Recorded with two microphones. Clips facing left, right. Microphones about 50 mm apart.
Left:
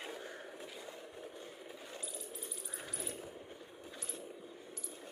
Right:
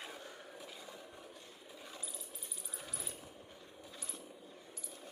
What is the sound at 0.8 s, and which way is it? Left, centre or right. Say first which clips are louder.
Vehicle: left 3 dB; left.